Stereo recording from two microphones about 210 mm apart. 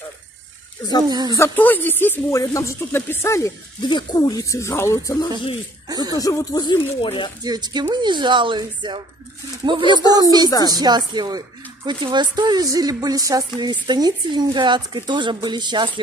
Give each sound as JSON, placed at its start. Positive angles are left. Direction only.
{"t": 1.0, "sound": "speech", "side_deg": -20}
{"t": 1.3, "sound": "speech", "side_deg": 10}
{"t": 5.9, "sound": "speech", "side_deg": -20}
{"t": 6.1, "sound": "speech", "side_deg": 15}
{"t": 7.4, "sound": "speech", "side_deg": -20}